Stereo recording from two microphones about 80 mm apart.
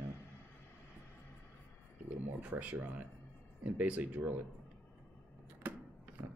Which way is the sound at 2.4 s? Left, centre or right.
Centre.